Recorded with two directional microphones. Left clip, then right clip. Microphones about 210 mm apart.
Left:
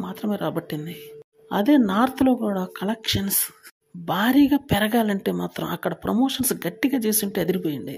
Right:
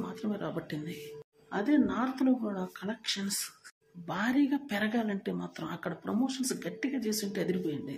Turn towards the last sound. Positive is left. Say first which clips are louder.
# left 8 dB
turn(degrees=40)  # may be behind; listen again after turning